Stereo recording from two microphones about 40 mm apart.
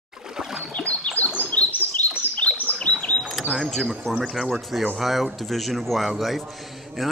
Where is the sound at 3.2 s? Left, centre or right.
Centre.